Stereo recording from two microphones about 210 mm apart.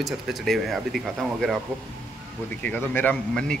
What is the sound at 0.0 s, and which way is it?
Speech, centre (ahead or behind).